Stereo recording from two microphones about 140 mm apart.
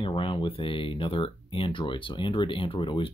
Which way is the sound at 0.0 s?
35° left (ahead or behind).